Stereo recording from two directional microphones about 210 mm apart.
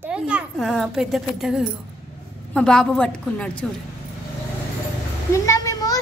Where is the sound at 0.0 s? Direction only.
5° right (ahead or behind).